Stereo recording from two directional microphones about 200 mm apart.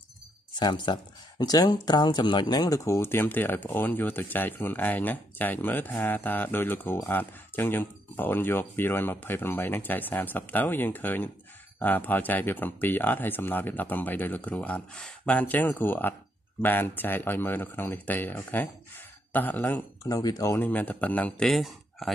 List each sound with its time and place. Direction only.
0.6 s speech: 20° left (ahead or behind); by 22.1 s centre (ahead or behind)